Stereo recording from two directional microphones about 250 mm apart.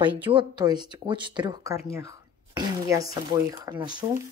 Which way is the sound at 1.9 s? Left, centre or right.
Centre.